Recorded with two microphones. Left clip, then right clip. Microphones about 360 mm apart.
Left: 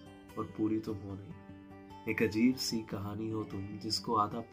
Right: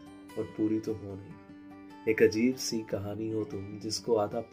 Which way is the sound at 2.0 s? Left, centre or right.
Centre.